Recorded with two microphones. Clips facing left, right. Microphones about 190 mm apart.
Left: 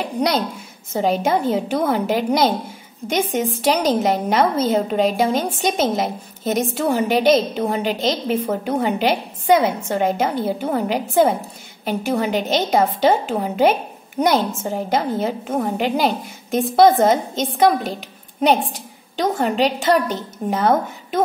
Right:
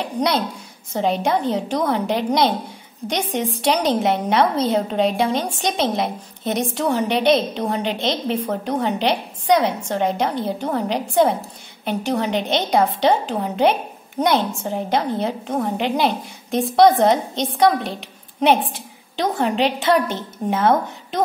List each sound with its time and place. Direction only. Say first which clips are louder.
0.9 s a woman's voice: left 1 dB; centre (ahead or behind)